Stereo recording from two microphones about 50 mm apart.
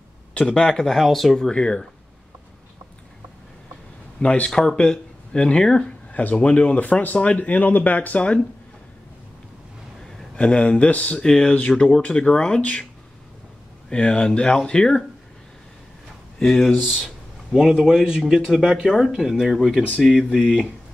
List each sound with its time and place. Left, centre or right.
0.3 s speech: centre
0.9 s speech: centre
1.5 s speech: centre
4.2 s speech: left
4.5 s speech: centre
4.7 s speech: centre
9.9 s a sound: centre
10.3 s speech: left
13.9 s speech: left
16.4 s speech: centre